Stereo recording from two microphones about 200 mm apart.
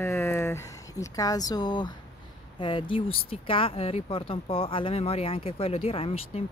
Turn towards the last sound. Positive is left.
turn(degrees=30)  # may be behind; listen again after turning